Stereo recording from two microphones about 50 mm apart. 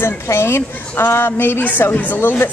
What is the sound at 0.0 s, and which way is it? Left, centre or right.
A woman's voice, left.